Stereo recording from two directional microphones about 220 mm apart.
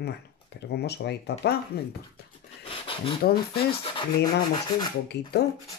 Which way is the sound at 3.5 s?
25° left (ahead or behind).